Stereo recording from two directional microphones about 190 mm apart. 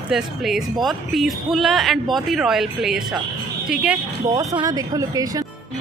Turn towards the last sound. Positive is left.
turn(degrees=-20)  # may be behind; listen again after turning